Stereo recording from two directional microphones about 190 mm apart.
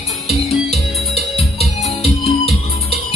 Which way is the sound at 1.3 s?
30° left (ahead or behind).